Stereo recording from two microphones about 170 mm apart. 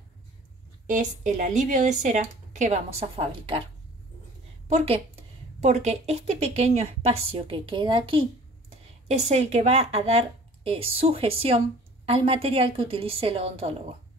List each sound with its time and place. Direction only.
0.8 s speech: 45° right (ahead or behind)
4.6 s a woman's voice: 40° right (ahead or behind)